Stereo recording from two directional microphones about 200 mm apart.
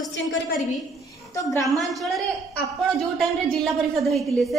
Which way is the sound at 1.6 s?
Centre (ahead or behind).